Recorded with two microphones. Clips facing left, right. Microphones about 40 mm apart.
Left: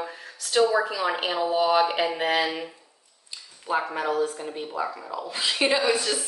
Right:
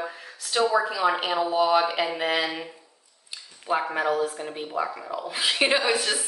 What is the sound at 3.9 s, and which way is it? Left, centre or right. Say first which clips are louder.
A woman's voice: right 1 dB; centre.